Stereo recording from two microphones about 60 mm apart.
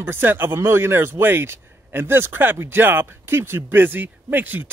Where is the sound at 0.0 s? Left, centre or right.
Right.